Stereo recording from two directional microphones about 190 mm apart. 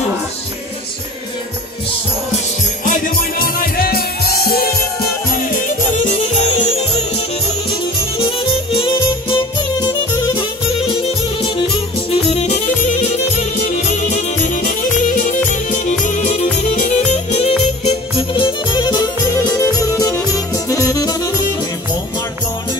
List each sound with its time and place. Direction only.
2.8 s music: 45° left (ahead or behind)
6.0 s music: 40° left (ahead or behind)
8.7 s music: 25° left (ahead or behind)
12.3 s music: 35° left (ahead or behind); by 21.5 s 20° left (ahead or behind)